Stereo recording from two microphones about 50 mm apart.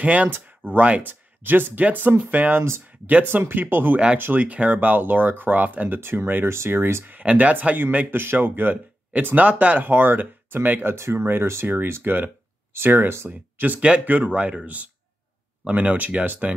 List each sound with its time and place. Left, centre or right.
0.0 s speech: right
5.9 s speech: right
6.7 s speech: right
7.1 s speech: right
8.1 s speech: right
9.8 s speech: right
11.0 s speech: right
11.6 s speech: right
13.3 s speech: right
14.3 s speech: right
15.7 s speech: right